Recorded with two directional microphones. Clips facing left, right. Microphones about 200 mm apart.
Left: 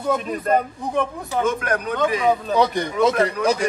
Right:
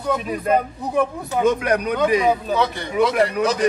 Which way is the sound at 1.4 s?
15° right (ahead or behind).